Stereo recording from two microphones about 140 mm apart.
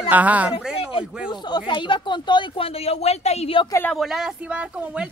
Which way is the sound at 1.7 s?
35° left (ahead or behind).